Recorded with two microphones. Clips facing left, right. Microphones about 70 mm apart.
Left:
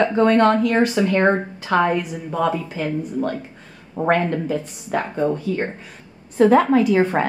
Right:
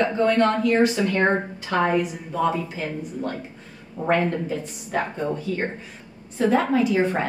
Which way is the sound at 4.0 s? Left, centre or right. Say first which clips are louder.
Left 5 dB; left.